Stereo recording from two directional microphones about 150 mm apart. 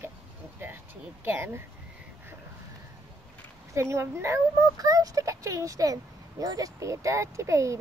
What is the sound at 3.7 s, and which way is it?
Speech, 20° right (ahead or behind).